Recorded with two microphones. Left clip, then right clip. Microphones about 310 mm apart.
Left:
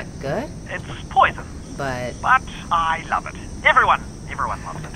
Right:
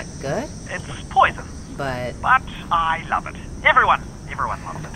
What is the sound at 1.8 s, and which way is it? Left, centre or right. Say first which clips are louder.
Speech: even; centre.